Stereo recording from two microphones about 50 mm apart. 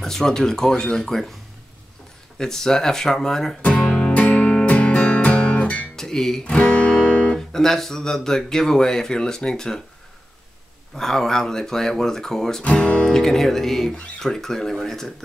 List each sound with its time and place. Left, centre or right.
0.0 s speech: centre
2.3 s speech: centre
3.8 s music: centre
4.1 s music: left
5.9 s music: centre
6.4 s music: left
7.3 s speech: centre
11.0 s speech: centre
12.7 s music: centre
13.1 s speech: centre